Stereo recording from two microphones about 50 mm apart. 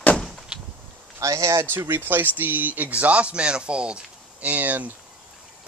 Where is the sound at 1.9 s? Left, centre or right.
Right.